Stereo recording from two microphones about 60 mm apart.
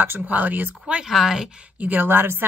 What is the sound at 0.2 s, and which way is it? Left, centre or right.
Speech, right.